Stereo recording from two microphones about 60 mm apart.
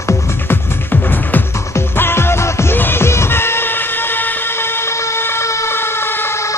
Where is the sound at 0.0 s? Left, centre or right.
Left.